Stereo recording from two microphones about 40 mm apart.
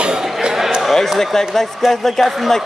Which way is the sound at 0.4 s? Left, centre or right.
Centre.